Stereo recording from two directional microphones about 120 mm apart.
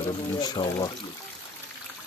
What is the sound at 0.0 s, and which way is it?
Speech, 40° left (ahead or behind).